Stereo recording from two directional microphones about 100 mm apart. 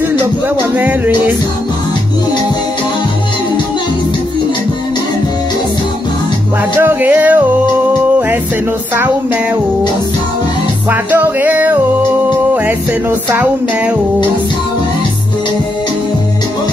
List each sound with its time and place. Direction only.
0.1 s music: 20° right (ahead or behind)
6.8 s music: 20° right (ahead or behind)
10.9 s music: 20° right (ahead or behind)